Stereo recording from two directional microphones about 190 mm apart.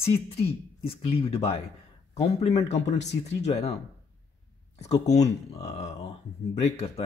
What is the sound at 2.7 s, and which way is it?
Speech, 40° left (ahead or behind).